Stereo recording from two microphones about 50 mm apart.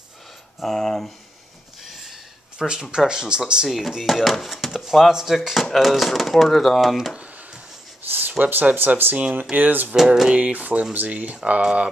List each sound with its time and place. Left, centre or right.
0.6 s speech: centre
1.8 s a sound: centre
2.6 s speech: centre
3.6 s speech: centre
8.1 s a sound: right
8.5 s speech: right
9.1 s speech: right